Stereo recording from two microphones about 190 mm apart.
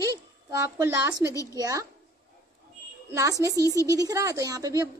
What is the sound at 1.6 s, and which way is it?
Speech, 20° right (ahead or behind).